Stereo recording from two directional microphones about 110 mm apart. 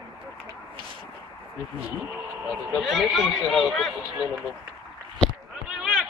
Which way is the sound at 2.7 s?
Centre (ahead or behind).